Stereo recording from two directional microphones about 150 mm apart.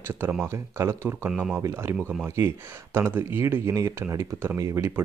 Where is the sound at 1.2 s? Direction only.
10° right (ahead or behind).